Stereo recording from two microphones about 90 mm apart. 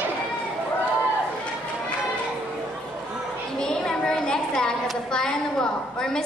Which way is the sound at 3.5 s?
5° left (ahead or behind).